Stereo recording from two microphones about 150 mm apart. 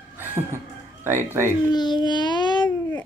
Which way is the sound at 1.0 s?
15° right (ahead or behind).